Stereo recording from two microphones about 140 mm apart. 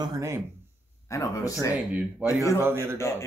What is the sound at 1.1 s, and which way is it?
Speech, 20° left (ahead or behind).